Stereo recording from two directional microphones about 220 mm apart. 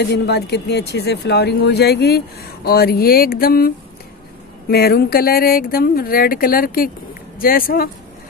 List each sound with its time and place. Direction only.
0.0 s speech: 50° left (ahead or behind)